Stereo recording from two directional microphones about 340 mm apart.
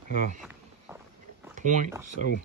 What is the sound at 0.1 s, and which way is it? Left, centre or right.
Speech, right.